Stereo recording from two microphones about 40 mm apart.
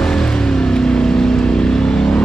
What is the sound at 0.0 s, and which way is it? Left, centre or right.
Vehicle, centre.